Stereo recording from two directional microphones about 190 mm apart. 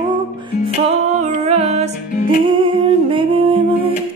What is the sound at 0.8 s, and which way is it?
Music, 35° right (ahead or behind).